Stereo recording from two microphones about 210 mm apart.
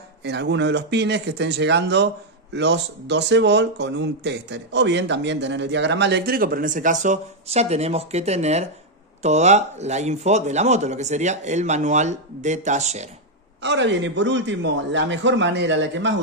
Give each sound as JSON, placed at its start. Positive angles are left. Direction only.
{"t": 0.2, "sound": "speech", "side_deg": -55}
{"t": 13.6, "sound": "speech", "side_deg": -60}